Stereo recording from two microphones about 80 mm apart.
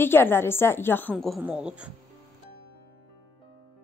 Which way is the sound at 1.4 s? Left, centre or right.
Centre.